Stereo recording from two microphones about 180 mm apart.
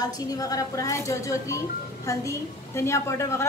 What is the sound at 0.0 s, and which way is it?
A woman's voice, 20° left (ahead or behind).